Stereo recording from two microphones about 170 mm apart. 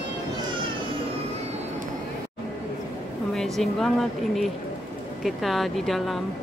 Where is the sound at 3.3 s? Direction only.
Centre (ahead or behind).